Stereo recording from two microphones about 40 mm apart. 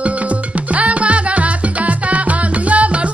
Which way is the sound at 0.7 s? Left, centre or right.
Right.